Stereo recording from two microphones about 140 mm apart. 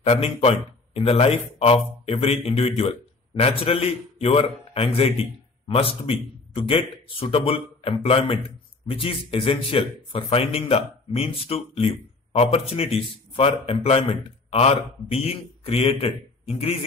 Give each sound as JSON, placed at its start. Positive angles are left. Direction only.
{"t": 0.0, "sound": "a man's voice", "side_deg": 45}